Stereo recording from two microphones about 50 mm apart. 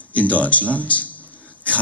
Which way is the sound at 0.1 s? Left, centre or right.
Left.